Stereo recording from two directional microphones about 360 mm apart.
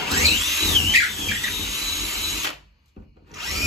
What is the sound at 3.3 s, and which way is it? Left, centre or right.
Drill, centre.